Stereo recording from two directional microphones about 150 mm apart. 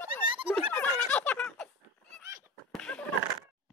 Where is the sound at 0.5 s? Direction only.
10° left (ahead or behind).